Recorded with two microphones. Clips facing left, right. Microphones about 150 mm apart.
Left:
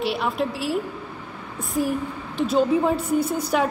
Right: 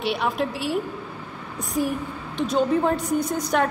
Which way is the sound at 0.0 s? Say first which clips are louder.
Even; centre (ahead or behind).